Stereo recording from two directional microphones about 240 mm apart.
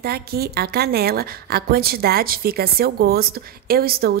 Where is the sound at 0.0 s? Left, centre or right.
Right.